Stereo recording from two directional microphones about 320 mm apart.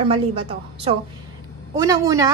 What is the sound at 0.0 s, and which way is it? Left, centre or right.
A woman's voice, centre.